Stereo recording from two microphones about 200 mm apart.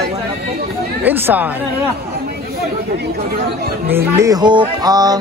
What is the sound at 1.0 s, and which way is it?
Speech, 10° right (ahead or behind).